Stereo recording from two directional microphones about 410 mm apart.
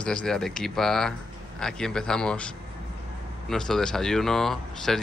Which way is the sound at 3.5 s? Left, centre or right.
Centre.